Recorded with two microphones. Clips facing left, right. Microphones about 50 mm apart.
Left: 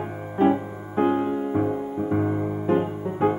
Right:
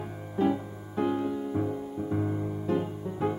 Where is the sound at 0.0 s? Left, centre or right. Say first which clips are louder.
Left 7 dB; left.